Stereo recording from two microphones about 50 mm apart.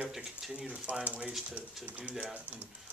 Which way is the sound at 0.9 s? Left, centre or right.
Right.